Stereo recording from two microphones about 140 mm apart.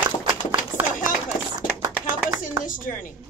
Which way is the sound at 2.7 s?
75° left (ahead or behind).